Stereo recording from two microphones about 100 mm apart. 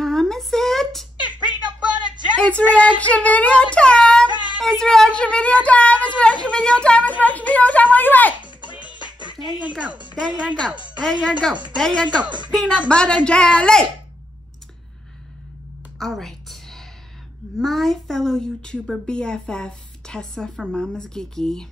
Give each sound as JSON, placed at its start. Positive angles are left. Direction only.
{"t": 0.0, "sound": "a sound", "side_deg": 5}
{"t": 2.3, "sound": "speech", "side_deg": 10}
{"t": 3.7, "sound": "child singing", "side_deg": 10}
{"t": 4.3, "sound": "child singing", "side_deg": -50}
{"t": 4.6, "sound": "speech", "side_deg": 5}
{"t": 8.4, "sound": "music", "side_deg": -50}
{"t": 9.6, "sound": "speech", "side_deg": -15}
{"t": 10.3, "sound": "speech", "side_deg": 10}
{"t": 12.1, "sound": "speech", "side_deg": -50}
{"t": 12.5, "sound": "speech", "side_deg": 10}
{"t": 16.0, "sound": "a sound", "side_deg": 5}
{"t": 17.6, "sound": "speech", "side_deg": 0}